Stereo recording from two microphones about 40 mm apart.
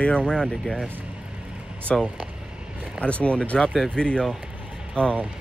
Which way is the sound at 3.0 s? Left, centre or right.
Left.